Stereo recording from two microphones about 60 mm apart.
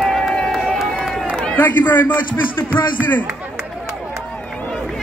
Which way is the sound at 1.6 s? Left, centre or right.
Left.